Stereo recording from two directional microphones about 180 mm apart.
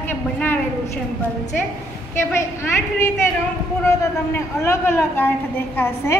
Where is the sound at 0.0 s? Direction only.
10° left (ahead or behind).